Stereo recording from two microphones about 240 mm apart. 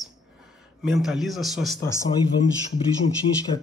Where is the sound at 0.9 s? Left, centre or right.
Centre.